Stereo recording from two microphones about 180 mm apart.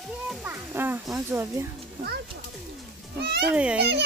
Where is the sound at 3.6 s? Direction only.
5° right (ahead or behind).